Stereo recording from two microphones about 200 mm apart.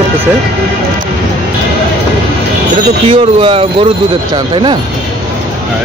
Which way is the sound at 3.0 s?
25° right (ahead or behind).